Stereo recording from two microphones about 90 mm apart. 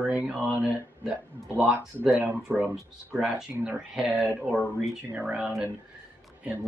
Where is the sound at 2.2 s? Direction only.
20° right (ahead or behind).